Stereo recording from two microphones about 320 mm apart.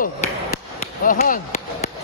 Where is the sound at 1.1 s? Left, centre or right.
Left.